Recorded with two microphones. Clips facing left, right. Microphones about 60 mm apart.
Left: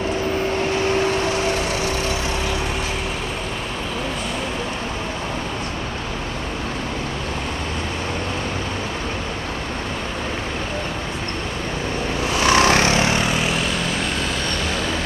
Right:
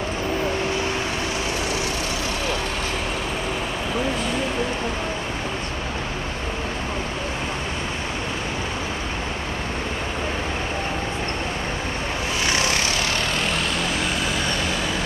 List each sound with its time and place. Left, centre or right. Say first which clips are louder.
12.4 s vehicle: left 9 dB; left
12.8 s vehicle: left 6 dB; left
13.2 s vehicle: left 3 dB; centre